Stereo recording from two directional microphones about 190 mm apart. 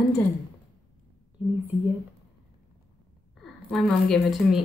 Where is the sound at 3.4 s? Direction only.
Centre (ahead or behind).